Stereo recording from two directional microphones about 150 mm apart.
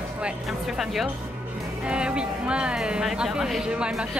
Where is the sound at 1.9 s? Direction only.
5° right (ahead or behind).